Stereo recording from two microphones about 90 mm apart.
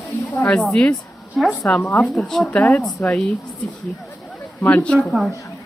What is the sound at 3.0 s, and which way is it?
Speech, 20° left (ahead or behind).